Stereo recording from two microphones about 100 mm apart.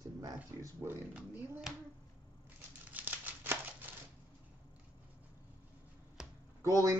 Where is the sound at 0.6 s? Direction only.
30° right (ahead or behind).